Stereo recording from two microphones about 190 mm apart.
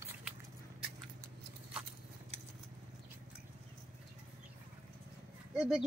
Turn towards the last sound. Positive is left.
turn(degrees=-5)  # may be behind; listen again after turning